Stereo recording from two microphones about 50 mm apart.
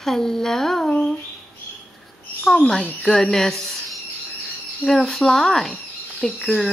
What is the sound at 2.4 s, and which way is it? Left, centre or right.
Speech, centre.